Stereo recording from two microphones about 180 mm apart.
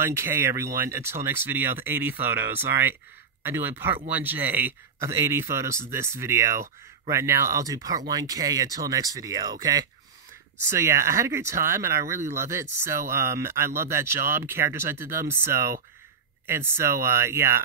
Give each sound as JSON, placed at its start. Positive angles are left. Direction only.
{"t": 0.0, "sound": "speech", "side_deg": -15}